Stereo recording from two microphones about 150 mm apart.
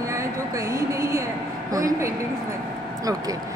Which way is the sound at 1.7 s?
25° right (ahead or behind).